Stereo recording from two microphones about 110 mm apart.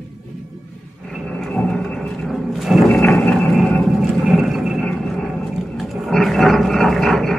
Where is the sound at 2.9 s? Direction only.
15° left (ahead or behind).